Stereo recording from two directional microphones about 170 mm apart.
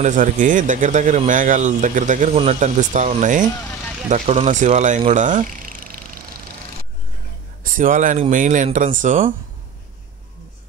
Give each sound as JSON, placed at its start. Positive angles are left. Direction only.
{"t": 0.0, "sound": "speech", "side_deg": -50}
{"t": 7.6, "sound": "speech", "side_deg": -50}